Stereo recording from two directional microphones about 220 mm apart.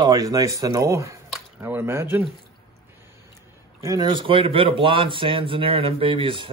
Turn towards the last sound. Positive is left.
turn(degrees=-25)  # may be behind; listen again after turning